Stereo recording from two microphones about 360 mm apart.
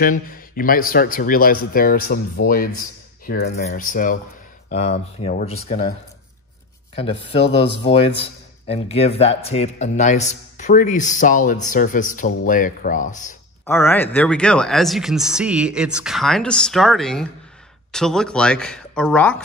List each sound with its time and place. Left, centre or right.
0.0 s speech: left
7.0 s speech: centre
13.7 s speech: centre